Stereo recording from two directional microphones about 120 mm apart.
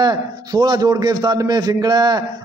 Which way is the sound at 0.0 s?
35° right (ahead or behind).